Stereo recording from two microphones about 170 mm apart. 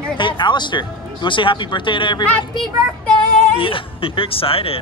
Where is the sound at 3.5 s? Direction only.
30° left (ahead or behind).